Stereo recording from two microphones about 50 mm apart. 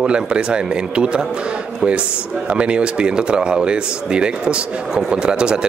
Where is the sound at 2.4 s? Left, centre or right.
Right.